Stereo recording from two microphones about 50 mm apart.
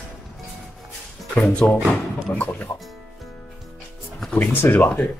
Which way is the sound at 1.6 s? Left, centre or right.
Left.